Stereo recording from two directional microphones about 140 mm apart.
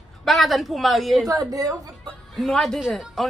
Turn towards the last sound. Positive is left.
turn(degrees=0)  # may be behind; listen again after turning